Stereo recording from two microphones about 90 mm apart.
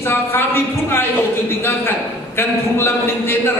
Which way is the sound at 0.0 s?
25° left (ahead or behind).